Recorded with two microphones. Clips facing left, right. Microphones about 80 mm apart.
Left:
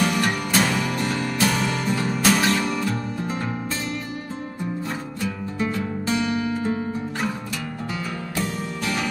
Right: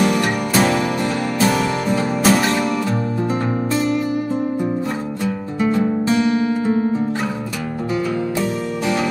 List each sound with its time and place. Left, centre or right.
0.0 s music: centre
5.2 s music: right
8.4 s music: centre